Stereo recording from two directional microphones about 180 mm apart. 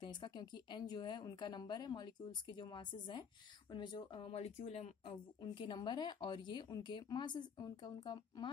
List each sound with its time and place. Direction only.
0.0 s a woman's voice: 25° left (ahead or behind)